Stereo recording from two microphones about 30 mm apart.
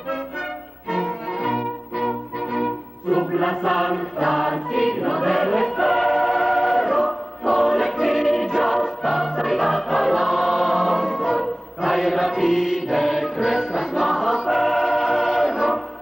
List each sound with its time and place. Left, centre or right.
0.9 s music: centre
3.4 s chant: centre
4.2 s music: centre
4.9 s choir: centre